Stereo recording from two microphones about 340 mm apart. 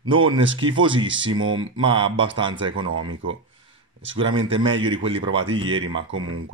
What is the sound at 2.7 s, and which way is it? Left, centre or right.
Speech, right.